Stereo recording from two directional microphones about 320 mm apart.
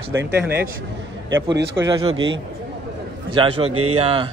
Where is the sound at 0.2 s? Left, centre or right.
Right.